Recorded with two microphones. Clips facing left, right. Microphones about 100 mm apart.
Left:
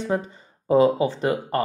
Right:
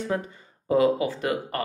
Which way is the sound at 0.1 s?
25° left (ahead or behind).